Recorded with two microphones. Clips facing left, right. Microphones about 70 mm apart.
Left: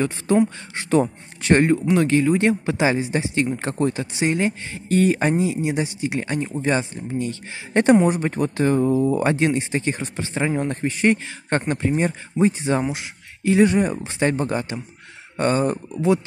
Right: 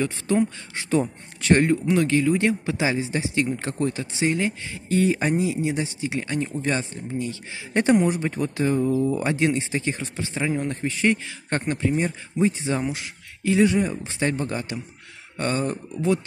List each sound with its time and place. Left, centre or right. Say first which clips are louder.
0.0 s a man's voice: left 3 dB; left
0.8 s speech: left 4 dB; left
1.4 s a man's voice: left 2 dB; left
4.8 s speech: left 3 dB; left
5.3 s a man's voice: left 2 dB; left
7.2 s speech: left 3 dB; left
8.6 s speech: left 3 dB; left
9.5 s a man's voice: left 2 dB; left
12.8 s a man's voice: left 2 dB; left